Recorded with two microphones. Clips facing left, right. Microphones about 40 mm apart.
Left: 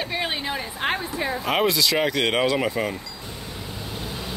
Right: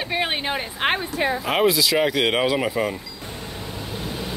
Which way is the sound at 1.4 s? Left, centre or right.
Centre.